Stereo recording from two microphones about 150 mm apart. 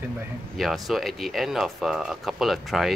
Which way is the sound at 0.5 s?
Centre (ahead or behind).